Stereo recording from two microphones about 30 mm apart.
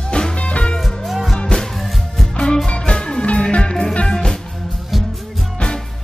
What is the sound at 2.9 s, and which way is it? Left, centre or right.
Music, left.